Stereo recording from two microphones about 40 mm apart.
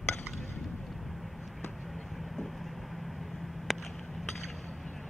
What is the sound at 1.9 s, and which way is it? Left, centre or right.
Vehicle, centre.